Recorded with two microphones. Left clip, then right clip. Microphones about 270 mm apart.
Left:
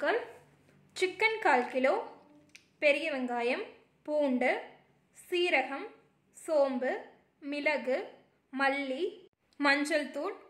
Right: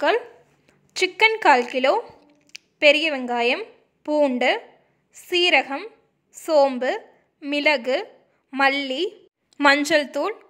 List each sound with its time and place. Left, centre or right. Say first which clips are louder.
0.9 s a woman's voice: right 11 dB; right